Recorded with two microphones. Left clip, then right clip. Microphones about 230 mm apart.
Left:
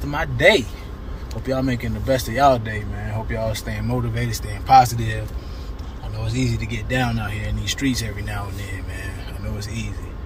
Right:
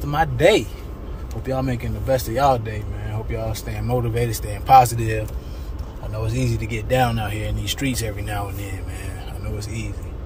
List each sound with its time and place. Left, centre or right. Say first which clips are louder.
0.1 s speech: even; centre
6.2 s speech: left 1 dB; centre
9.6 s speech: left 1 dB; centre